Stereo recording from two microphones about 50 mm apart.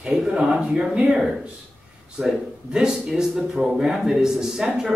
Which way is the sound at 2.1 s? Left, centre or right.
Centre.